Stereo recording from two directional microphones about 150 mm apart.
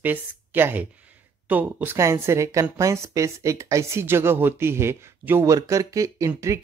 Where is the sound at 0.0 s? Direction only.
10° right (ahead or behind).